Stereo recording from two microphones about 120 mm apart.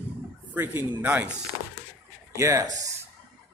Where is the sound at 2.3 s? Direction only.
25° right (ahead or behind).